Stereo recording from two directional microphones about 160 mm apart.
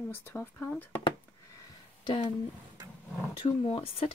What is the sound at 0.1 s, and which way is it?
Speech, 15° left (ahead or behind).